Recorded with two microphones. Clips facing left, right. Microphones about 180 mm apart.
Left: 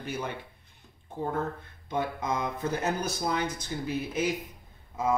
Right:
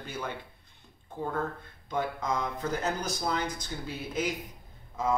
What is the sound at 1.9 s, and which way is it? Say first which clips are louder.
Speech: left 1 dB; 20° left (ahead or behind).